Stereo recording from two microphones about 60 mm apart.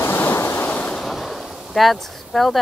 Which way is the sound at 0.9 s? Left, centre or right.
Centre.